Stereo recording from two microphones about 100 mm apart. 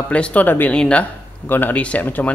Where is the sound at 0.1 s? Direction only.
15° left (ahead or behind).